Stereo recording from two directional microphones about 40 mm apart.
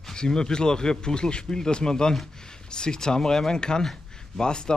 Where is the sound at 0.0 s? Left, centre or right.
Centre.